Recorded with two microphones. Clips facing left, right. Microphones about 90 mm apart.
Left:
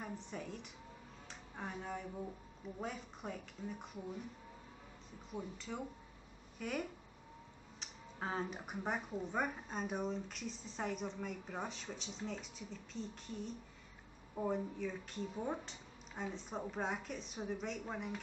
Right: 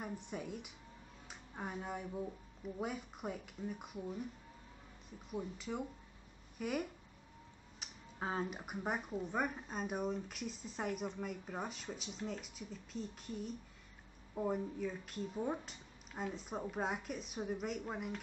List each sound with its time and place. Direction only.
0.0 s a woman's voice: 10° right (ahead or behind)
5.3 s a woman's voice: 10° right (ahead or behind)